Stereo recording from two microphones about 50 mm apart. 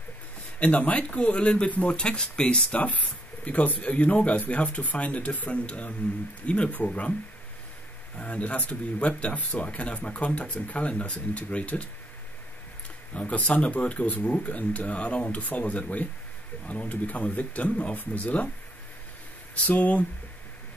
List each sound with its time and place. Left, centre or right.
0.6 s speech: left
2.8 s speech: left
8.2 s speech: left
13.1 s speech: left
19.5 s speech: left